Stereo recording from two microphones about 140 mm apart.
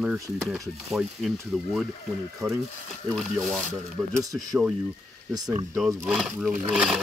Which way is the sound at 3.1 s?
Centre (ahead or behind).